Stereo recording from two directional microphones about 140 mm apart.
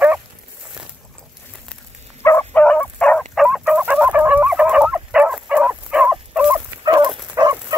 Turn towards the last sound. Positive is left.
turn(degrees=-25)  # may be behind; listen again after turning